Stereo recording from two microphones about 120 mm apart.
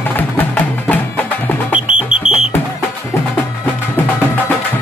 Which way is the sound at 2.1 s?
50° left (ahead or behind).